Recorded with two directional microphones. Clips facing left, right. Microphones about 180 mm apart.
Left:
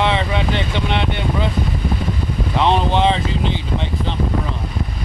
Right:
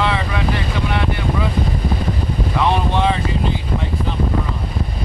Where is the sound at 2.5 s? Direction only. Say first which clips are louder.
Left 2 dB; 25° left (ahead or behind).